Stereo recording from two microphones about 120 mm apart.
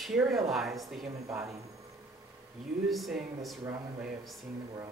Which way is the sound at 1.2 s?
25° right (ahead or behind).